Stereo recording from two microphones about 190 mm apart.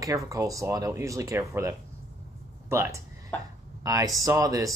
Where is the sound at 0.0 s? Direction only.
15° right (ahead or behind).